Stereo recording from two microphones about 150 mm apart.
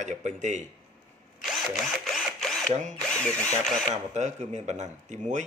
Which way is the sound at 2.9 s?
5° left (ahead or behind).